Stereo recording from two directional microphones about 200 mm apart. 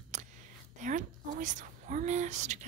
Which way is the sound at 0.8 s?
40° right (ahead or behind).